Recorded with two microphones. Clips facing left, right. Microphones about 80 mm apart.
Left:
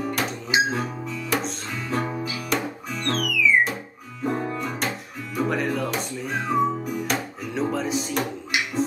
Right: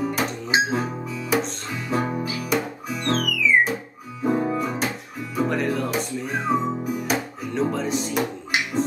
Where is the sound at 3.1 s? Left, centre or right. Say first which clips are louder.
Right 2 dB; right.